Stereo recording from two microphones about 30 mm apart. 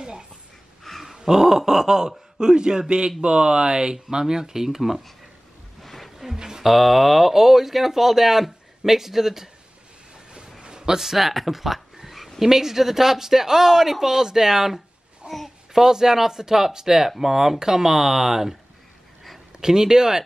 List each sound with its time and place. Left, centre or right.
1.1 s a sound: centre
1.7 s speech: centre
4.6 s speech: centre
5.8 s a sound: centre
6.1 s a sound: centre
6.6 s speech: centre
10.1 s train: right
10.6 s frog: right; by 12.3 s centre
12.4 s speech: centre
15.2 s a child's voice: right
15.7 s speech: centre
19.6 s speech: right